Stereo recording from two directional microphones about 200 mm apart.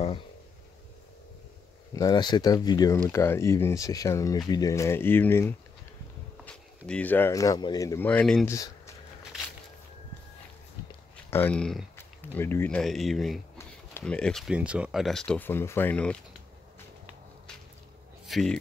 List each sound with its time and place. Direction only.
2.0 s speech: 20° left (ahead or behind)
6.9 s speech: 10° left (ahead or behind)
8.5 s a sound: 15° left (ahead or behind)
11.2 s speech: 10° left (ahead or behind)
18.2 s speech: centre (ahead or behind)